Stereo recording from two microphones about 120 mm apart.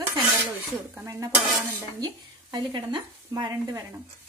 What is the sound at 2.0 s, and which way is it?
Speech, 35° right (ahead or behind).